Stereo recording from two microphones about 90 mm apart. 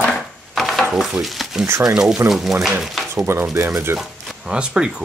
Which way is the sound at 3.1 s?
30° right (ahead or behind).